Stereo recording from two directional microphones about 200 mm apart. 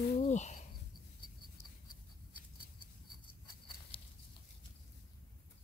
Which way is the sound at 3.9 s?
25° left (ahead or behind).